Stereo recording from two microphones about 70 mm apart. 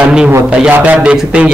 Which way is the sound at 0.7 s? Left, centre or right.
Centre.